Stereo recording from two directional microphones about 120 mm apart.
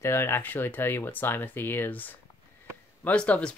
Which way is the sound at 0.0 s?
20° left (ahead or behind).